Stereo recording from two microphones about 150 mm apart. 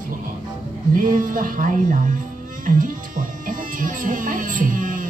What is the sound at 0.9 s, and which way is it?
Speech, 65° right (ahead or behind).